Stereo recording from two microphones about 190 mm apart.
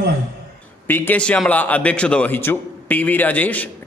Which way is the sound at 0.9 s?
10° left (ahead or behind).